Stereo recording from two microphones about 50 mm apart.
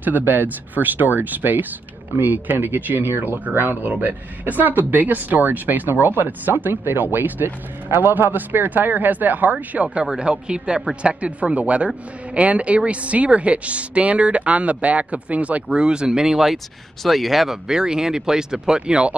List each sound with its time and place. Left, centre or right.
0.0 s speech: right
10.0 s speech: centre